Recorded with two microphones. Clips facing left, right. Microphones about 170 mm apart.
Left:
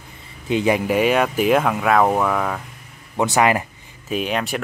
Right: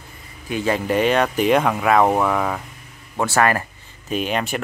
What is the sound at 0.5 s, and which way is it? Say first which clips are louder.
Speech: left 3 dB; 15° left (ahead or behind).